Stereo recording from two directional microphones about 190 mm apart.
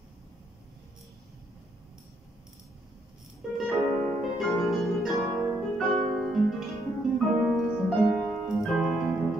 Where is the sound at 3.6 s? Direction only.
5° left (ahead or behind).